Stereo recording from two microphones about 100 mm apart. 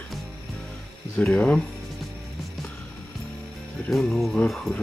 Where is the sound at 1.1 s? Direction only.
15° left (ahead or behind).